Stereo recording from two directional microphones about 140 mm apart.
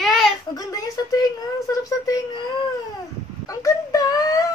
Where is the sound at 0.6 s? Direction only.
25° left (ahead or behind).